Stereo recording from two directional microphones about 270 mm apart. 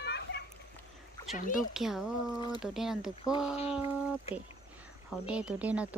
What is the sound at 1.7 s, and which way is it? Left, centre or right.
Speech, centre.